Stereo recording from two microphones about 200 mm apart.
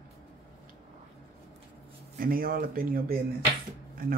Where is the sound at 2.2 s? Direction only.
45° right (ahead or behind).